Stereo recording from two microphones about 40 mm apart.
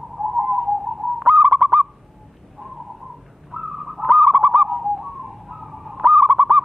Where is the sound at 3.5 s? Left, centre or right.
Centre.